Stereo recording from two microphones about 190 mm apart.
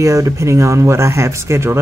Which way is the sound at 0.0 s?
15° right (ahead or behind).